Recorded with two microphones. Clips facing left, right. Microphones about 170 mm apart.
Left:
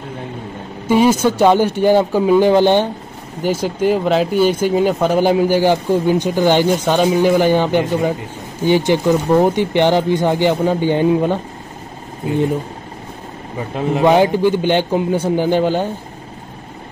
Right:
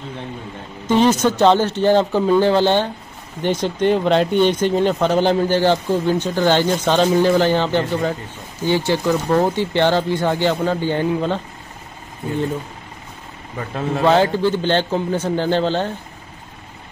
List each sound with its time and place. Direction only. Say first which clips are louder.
0.8 s speech: left 2 dB; 10° left (ahead or behind)
13.6 s speech: left 4 dB; 15° left (ahead or behind)